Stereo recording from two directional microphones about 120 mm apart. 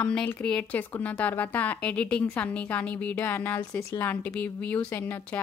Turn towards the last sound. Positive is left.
turn(degrees=15)  # may be behind; listen again after turning